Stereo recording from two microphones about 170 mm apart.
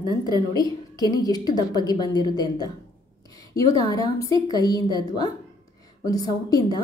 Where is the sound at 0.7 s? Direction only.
20° left (ahead or behind).